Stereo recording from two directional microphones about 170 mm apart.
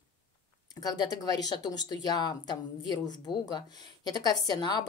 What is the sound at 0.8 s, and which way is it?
Speech, 20° left (ahead or behind).